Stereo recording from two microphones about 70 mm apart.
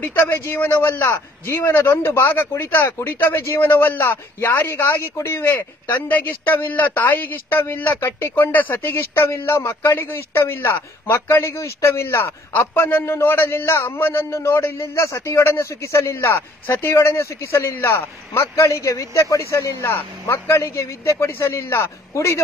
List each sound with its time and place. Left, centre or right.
0.0 s a man's voice: left
18.6 s a man's voice: left
19.8 s a man's voice: left